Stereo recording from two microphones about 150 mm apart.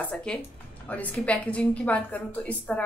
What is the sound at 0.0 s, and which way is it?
A woman's voice, 5° left (ahead or behind).